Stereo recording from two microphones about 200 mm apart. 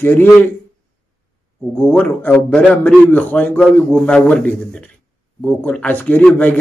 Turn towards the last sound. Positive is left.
turn(degrees=10)  # may be behind; listen again after turning